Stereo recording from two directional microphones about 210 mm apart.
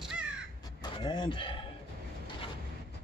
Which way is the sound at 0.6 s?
20° left (ahead or behind).